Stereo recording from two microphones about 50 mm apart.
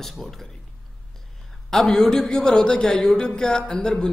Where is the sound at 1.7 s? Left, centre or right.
Centre.